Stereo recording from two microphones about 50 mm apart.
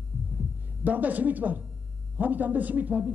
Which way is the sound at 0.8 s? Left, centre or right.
Right.